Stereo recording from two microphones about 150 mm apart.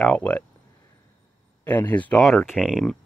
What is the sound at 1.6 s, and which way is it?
Speech, 10° left (ahead or behind).